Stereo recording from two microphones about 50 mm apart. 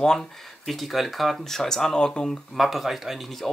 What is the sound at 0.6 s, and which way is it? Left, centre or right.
Speech, centre.